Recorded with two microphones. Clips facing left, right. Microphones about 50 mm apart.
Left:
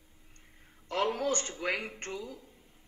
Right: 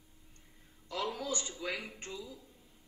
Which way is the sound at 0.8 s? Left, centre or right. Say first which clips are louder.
Left 7 dB; left.